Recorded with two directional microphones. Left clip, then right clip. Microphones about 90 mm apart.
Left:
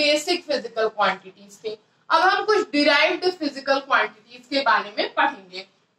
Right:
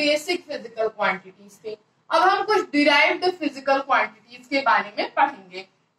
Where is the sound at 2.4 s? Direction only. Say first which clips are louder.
Even; 25° left (ahead or behind).